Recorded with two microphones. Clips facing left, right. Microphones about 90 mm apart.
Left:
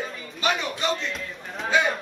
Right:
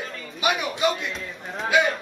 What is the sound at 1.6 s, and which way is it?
Speech, 10° right (ahead or behind).